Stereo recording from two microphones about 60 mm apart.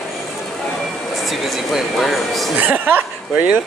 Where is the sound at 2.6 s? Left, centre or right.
Right.